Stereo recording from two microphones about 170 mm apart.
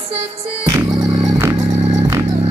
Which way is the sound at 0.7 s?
25° right (ahead or behind).